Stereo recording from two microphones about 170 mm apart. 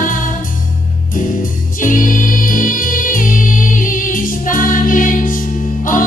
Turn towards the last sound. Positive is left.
turn(degrees=50)  # may be behind; listen again after turning